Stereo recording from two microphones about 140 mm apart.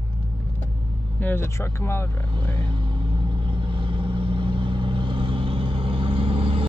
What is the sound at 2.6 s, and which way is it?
Vehicle, 35° right (ahead or behind).